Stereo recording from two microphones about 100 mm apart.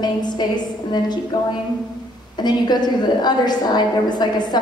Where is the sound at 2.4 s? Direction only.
45° left (ahead or behind).